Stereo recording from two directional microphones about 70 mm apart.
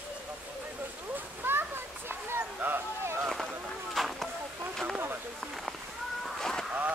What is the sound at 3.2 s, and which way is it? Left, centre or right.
Run, centre.